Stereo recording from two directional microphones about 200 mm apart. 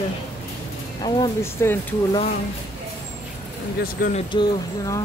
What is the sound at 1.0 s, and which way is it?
Speech, 15° left (ahead or behind).